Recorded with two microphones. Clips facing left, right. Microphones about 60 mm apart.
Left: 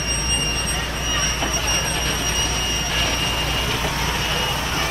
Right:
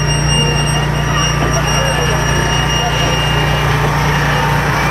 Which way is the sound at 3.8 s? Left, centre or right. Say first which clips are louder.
Right 9 dB; right.